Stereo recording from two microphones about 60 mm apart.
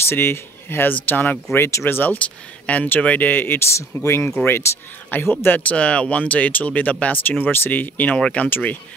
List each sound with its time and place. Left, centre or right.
0.1 s speech: left
2.1 s speech: left
5.1 s speech: left
8.5 s speech: left